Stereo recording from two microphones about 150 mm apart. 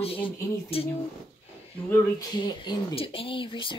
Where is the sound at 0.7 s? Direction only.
40° left (ahead or behind).